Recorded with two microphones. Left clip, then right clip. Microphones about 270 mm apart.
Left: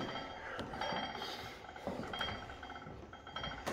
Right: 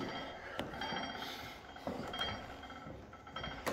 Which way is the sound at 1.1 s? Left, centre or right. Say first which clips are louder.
Left 1 dB; centre.